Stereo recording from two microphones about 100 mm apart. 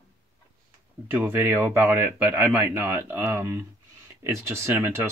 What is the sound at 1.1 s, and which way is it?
Speech, 20° right (ahead or behind).